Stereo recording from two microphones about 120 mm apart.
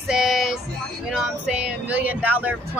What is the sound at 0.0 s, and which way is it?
Music, 5° right (ahead or behind).